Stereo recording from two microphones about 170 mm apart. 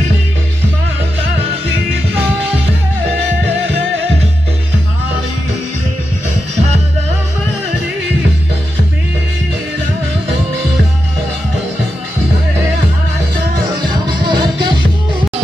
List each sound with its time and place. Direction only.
13.7 s music: 25° right (ahead or behind)